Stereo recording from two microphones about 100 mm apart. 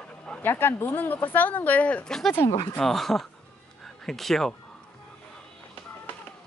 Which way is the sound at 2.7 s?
5° left (ahead or behind).